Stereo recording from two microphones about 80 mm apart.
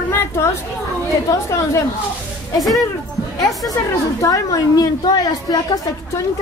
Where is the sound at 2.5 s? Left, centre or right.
Centre.